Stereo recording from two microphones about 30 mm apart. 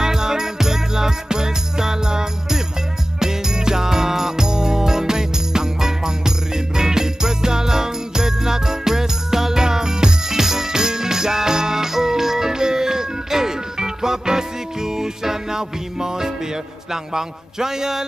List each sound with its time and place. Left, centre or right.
0.0 s music: centre
16.9 s a man's voice: centre